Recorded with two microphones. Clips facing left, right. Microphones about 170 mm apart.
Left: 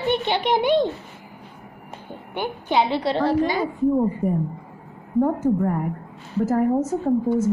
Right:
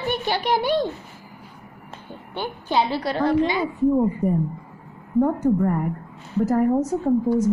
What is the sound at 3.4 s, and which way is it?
Speech, 45° left (ahead or behind).